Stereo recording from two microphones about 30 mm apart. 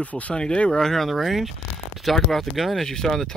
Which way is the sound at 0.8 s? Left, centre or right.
Centre.